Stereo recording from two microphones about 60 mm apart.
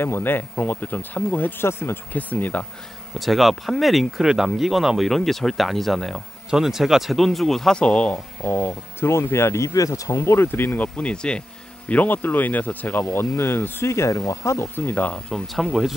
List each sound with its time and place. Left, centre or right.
0.0 s speech: left
1.7 s speech: left
2.1 s speech: left
3.2 s speech: centre
8.5 s speech: left
9.8 s speech: left
10.2 s speech: left
11.0 s speech: centre
11.9 s speech: left
14.1 s speech: left
14.8 s speech: left
15.1 s speech: centre
15.4 s speech: centre